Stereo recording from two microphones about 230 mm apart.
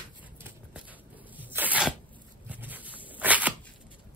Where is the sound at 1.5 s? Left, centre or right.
Centre.